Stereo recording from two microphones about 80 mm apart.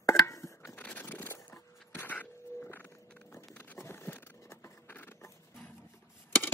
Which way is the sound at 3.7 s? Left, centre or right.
Left.